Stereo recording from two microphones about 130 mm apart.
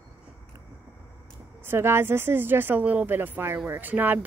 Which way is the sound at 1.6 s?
15° right (ahead or behind).